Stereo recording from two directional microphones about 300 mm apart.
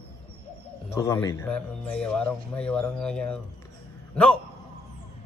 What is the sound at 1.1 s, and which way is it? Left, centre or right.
Speech, centre.